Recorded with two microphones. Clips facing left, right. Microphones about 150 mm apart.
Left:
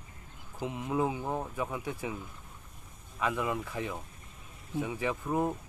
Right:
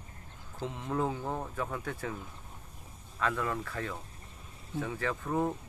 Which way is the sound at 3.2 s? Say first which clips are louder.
Left 1 dB; 10° left (ahead or behind).